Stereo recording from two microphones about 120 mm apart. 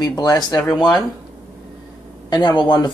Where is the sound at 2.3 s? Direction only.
35° left (ahead or behind).